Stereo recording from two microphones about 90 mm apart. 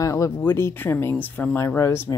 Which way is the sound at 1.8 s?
30° left (ahead or behind).